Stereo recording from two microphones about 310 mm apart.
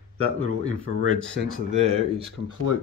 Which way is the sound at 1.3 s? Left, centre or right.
Right.